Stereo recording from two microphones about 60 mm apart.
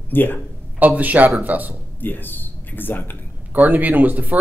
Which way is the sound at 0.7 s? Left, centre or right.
Right.